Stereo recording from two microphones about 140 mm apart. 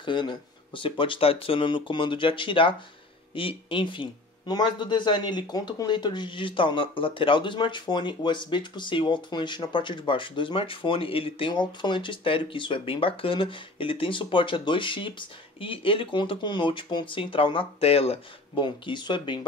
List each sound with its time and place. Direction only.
0.0 s speech: 35° left (ahead or behind)
18.5 s speech: 35° left (ahead or behind)